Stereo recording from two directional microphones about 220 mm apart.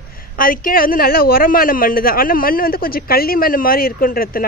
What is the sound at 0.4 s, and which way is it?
A woman's voice, 40° left (ahead or behind).